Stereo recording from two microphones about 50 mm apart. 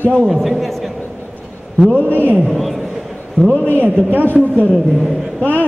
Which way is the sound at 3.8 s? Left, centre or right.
Right.